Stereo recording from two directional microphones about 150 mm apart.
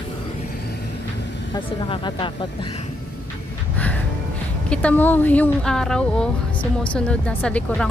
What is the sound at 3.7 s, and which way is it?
Music, 10° left (ahead or behind).